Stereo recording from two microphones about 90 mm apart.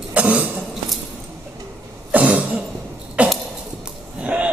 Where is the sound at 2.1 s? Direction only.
15° right (ahead or behind).